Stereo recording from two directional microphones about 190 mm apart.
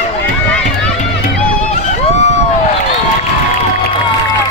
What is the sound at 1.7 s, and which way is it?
Run, 35° left (ahead or behind).